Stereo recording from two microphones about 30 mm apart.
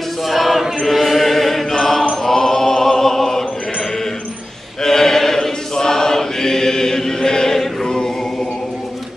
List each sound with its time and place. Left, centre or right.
0.3 s choir: centre
2.2 s music: centre
4.8 s choir: centre